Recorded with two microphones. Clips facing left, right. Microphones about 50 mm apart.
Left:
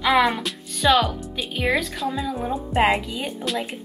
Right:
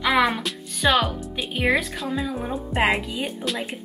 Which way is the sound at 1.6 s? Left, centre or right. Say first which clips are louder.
Right 1 dB; centre.